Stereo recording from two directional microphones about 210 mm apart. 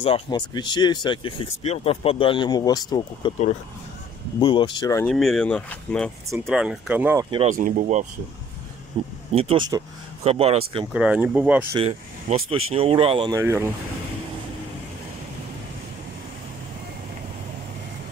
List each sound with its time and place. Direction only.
0.0 s speech: 25° left (ahead or behind)
5.0 s speech: centre (ahead or behind)
7.2 s speech: 25° right (ahead or behind)
7.5 s speech: 40° right (ahead or behind)
9.0 s speech: 25° right (ahead or behind)
10.9 s speech: 5° right (ahead or behind)
11.7 s speech: 25° right (ahead or behind)